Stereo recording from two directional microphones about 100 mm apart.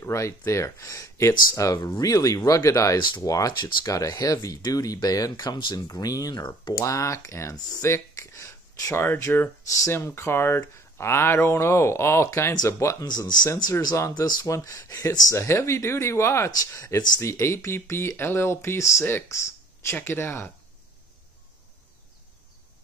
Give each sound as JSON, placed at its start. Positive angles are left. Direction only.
{"t": 0.0, "sound": "speech", "side_deg": 30}
{"t": 7.8, "sound": "a sound", "side_deg": 30}
{"t": 8.9, "sound": "speech", "side_deg": 25}
{"t": 13.6, "sound": "speech", "side_deg": 40}